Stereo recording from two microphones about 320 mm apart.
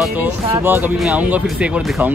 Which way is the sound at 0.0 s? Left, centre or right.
Centre.